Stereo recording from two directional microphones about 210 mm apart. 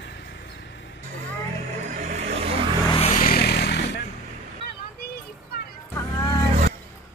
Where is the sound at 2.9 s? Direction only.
30° left (ahead or behind); by 3.8 s 50° left (ahead or behind).